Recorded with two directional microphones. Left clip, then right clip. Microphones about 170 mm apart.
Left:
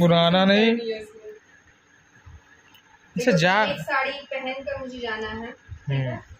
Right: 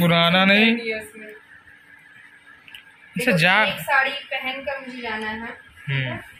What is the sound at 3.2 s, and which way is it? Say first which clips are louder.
Speech: right 2 dB; 35° left (ahead or behind).